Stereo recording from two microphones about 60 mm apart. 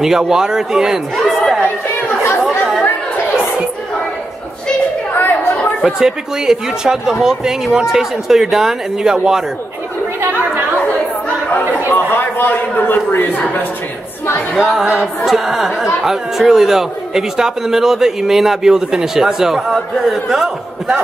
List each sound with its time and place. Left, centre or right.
0.0 s speech: centre
5.8 s speech: centre
10.2 s chatter: right
11.9 s a man's voice: left
14.5 s speech: centre